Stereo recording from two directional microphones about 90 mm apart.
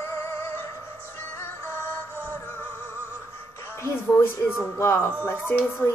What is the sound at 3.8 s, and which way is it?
Speech, 30° left (ahead or behind).